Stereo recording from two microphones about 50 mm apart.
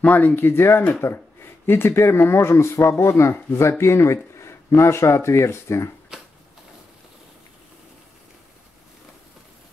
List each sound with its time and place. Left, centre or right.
0.0 s speech: left
0.4 s speech: left
6.1 s a sound: centre